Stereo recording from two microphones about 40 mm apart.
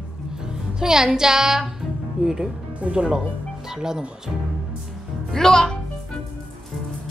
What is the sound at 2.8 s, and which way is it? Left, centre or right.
Speech, right.